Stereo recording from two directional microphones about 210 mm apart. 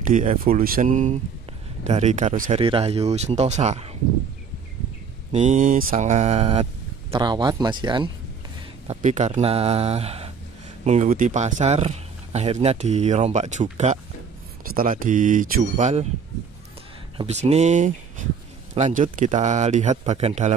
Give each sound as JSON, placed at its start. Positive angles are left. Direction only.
{"t": 0.0, "sound": "speech", "side_deg": -40}
{"t": 5.3, "sound": "speech", "side_deg": -35}
{"t": 8.8, "sound": "speech", "side_deg": -35}
{"t": 17.2, "sound": "speech", "side_deg": -30}